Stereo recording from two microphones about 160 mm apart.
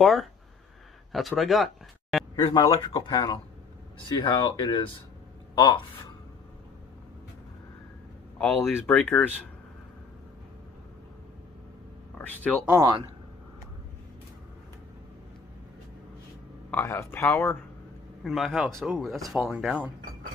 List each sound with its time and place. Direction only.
0.0 s speech: centre (ahead or behind)
2.4 s speech: 30° left (ahead or behind)
8.4 s speech: 10° left (ahead or behind)
12.2 s speech: 10° left (ahead or behind)
16.7 s speech: 15° left (ahead or behind)
18.2 s speech: centre (ahead or behind)